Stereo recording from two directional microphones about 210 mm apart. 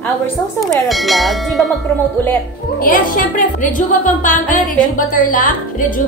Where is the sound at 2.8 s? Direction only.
40° left (ahead or behind).